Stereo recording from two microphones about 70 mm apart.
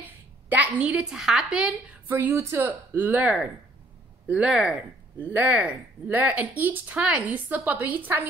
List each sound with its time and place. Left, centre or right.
0.0 s a sound: right
0.7 s a woman's voice: centre
2.0 s speech: right
2.3 s speech: right
2.6 s speech: right
4.5 s a woman's voice: centre
5.3 s a woman's voice: right